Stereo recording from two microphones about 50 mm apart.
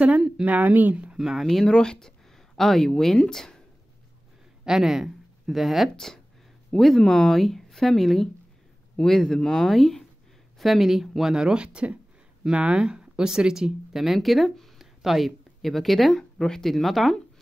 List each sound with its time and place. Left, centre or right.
0.5 s speech: right
1.1 s speech: centre
1.7 s speech: centre
4.6 s speech: centre
5.9 s speech: centre